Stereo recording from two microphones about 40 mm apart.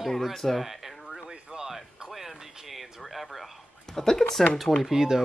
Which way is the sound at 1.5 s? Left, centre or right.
Centre.